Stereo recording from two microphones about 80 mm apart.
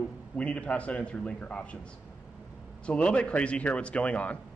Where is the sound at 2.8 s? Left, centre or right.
Centre.